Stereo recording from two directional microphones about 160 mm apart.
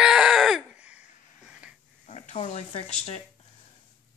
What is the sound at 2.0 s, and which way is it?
Speech, 45° left (ahead or behind).